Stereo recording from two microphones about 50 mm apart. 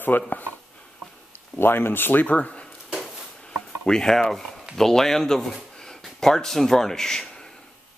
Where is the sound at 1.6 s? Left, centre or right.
Left.